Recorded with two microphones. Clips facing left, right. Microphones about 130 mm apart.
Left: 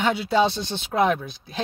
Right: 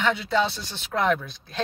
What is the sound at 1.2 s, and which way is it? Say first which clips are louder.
Speech: left 1 dB; 5° left (ahead or behind).